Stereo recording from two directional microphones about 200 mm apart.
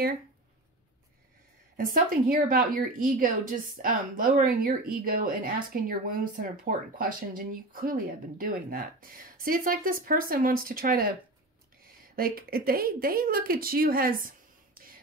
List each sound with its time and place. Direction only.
1.8 s a woman's voice: 45° right (ahead or behind)
12.2 s speech: 50° right (ahead or behind)